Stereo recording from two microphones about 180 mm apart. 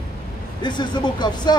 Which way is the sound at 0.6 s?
25° left (ahead or behind).